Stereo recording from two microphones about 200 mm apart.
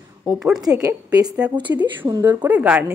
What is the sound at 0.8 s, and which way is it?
A woman's voice, 20° right (ahead or behind).